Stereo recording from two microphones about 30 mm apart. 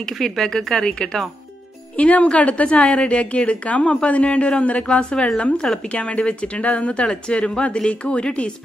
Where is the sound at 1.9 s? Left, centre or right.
Left.